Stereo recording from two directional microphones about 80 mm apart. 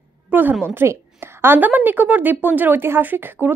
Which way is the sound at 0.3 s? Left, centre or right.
Right.